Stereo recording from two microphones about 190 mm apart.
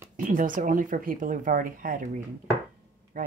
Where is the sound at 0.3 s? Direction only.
40° right (ahead or behind).